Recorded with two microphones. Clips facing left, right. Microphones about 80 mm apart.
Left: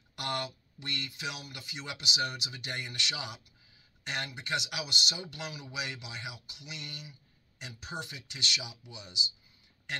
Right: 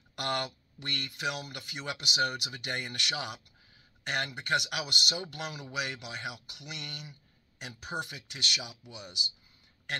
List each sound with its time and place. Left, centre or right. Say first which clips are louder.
0.2 s speech: right 2 dB; right